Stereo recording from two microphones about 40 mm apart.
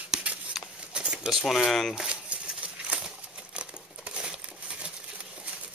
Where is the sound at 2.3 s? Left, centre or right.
Right.